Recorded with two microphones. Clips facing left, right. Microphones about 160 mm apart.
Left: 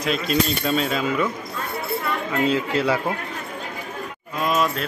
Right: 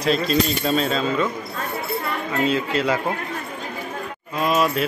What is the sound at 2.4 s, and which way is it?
Speech, 15° left (ahead or behind).